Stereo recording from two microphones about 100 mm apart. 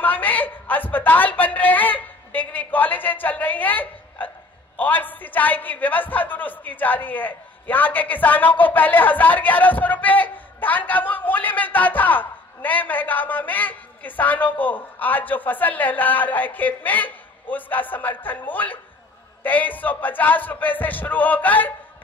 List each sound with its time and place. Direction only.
0.0 s a woman's voice: 15° left (ahead or behind)